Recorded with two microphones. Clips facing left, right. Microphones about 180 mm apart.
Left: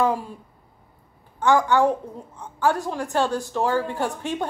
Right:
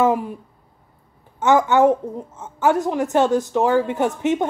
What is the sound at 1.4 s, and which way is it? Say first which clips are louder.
A woman's voice: right 4 dB; 20° right (ahead or behind).